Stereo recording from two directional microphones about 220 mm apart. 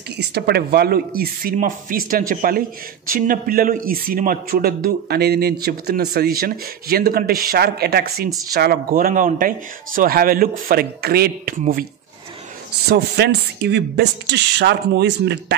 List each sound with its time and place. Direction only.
0.2 s a man's voice: 45° right (ahead or behind)
12.8 s a man's voice: 50° right (ahead or behind)